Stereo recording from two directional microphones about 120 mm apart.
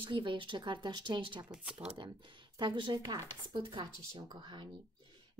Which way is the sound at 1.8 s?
10° right (ahead or behind).